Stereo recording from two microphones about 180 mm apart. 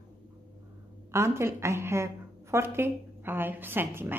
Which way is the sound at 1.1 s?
15° right (ahead or behind).